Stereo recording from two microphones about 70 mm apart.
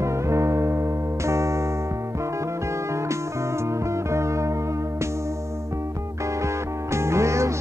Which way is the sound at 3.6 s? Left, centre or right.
Right.